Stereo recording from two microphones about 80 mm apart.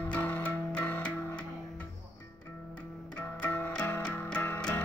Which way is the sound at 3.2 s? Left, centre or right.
Centre.